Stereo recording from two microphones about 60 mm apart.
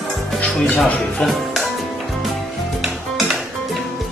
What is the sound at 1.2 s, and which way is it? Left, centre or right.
Music, centre.